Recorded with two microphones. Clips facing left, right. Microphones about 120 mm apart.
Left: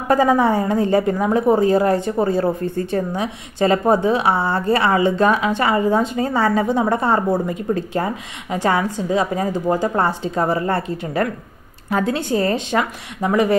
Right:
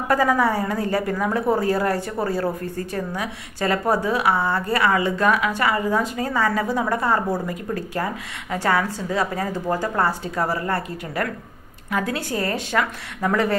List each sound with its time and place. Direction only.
0.1 s a woman's voice: 25° left (ahead or behind)